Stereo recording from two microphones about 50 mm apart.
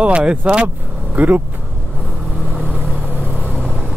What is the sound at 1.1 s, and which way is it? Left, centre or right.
Speech, right.